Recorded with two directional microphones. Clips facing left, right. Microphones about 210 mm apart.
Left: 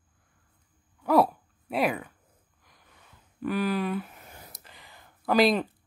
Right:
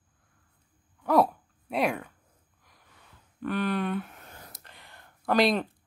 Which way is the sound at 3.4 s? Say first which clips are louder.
Left 1 dB; 5° left (ahead or behind).